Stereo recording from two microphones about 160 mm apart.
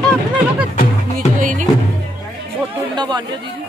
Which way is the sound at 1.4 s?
55° right (ahead or behind).